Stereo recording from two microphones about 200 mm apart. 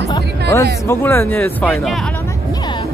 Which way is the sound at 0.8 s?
10° left (ahead or behind).